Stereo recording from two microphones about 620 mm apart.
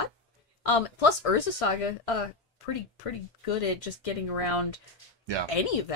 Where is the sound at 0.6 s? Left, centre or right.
Left.